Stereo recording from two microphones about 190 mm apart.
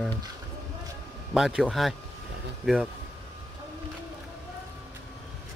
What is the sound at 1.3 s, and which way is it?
Speech, centre (ahead or behind).